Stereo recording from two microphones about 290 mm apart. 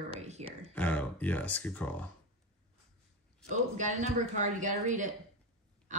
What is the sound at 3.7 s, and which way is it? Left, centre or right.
Speech, right.